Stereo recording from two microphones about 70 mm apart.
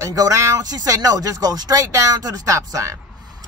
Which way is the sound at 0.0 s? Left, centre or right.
Right.